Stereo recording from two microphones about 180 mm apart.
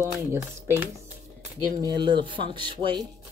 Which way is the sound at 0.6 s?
15° right (ahead or behind).